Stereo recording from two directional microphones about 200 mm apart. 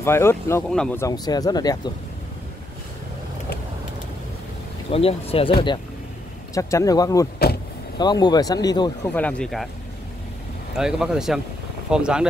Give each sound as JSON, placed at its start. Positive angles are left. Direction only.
{"t": 0.0, "sound": "speech", "side_deg": 10}
{"t": 1.0, "sound": "speech", "side_deg": 20}
{"t": 4.9, "sound": "speech", "side_deg": 30}
{"t": 6.5, "sound": "speech", "side_deg": 15}
{"t": 7.5, "sound": "speech", "side_deg": 55}
{"t": 8.0, "sound": "speech", "side_deg": 20}
{"t": 9.1, "sound": "speech", "side_deg": 5}
{"t": 10.8, "sound": "speech", "side_deg": -5}